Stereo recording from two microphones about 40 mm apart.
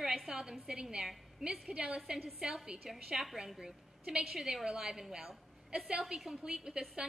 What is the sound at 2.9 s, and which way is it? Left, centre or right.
A woman's voice, centre.